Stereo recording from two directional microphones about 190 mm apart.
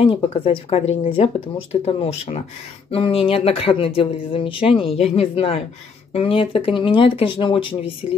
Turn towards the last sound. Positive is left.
turn(degrees=25)  # may be behind; listen again after turning